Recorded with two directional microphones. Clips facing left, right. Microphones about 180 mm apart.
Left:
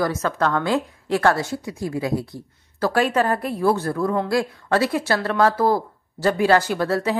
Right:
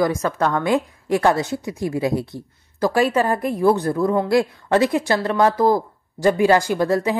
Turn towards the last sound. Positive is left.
turn(degrees=-15)  # may be behind; listen again after turning